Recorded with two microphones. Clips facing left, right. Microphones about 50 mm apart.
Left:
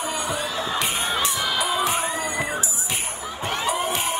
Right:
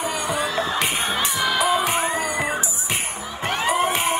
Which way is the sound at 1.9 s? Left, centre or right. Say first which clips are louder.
Right 3 dB; right.